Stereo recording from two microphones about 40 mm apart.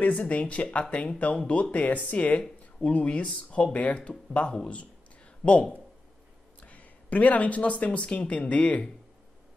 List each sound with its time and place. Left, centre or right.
0.0 s speech: left